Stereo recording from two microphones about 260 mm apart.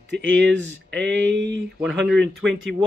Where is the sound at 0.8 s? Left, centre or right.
Right.